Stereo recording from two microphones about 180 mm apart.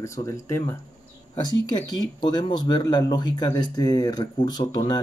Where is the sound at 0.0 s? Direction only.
15° left (ahead or behind).